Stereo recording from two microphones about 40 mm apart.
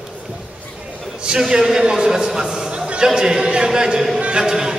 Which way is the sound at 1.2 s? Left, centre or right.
Centre.